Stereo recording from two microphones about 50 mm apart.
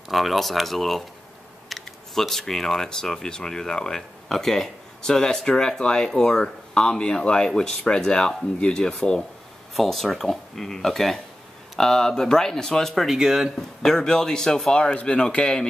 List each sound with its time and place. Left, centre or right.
0.1 s speech: centre
9.8 s speech: centre
13.6 s speech: centre